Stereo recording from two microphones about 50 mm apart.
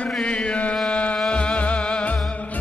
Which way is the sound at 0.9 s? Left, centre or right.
Left.